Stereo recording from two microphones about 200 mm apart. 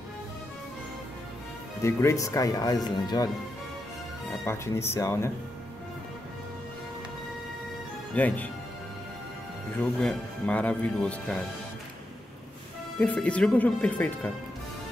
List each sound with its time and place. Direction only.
1.8 s speech: 15° left (ahead or behind)
4.5 s speech: 15° left (ahead or behind)
8.1 s speech: 10° left (ahead or behind)
9.9 s speech: 5° left (ahead or behind)
13.0 s speech: 5° left (ahead or behind)